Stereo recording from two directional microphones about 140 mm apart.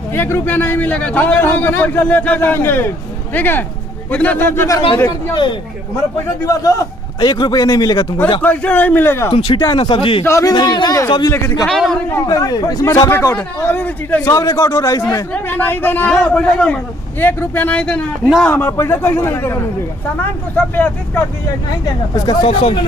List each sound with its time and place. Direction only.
0.1 s a man's voice: 15° left (ahead or behind)
5.3 s speech: 35° left (ahead or behind)
6.4 s speech: 25° left (ahead or behind)
8.4 s a man's voice: 10° left (ahead or behind)
9.3 s speech: 35° left (ahead or behind)
10.2 s speech: 25° left (ahead or behind)
11.6 s a man's voice: 5° left (ahead or behind)
12.3 s speech: 25° left (ahead or behind); by 14.2 s 10° left (ahead or behind)
14.2 s speech: 20° left (ahead or behind)
15.3 s a man's voice: 15° left (ahead or behind)
22.1 s speech: 30° left (ahead or behind)